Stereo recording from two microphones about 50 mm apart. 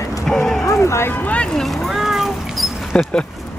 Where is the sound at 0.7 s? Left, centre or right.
Left.